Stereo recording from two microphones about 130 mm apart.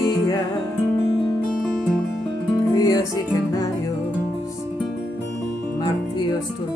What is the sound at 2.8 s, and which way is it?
Music, 25° left (ahead or behind).